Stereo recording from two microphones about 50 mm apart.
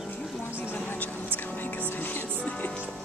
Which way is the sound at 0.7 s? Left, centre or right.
Left.